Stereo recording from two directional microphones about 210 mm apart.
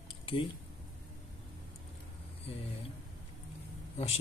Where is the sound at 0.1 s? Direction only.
25° left (ahead or behind).